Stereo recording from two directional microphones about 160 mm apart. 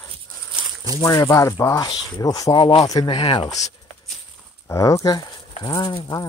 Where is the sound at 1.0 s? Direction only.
20° left (ahead or behind).